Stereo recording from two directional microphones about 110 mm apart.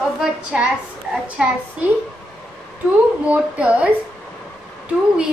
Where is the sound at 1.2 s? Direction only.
10° right (ahead or behind).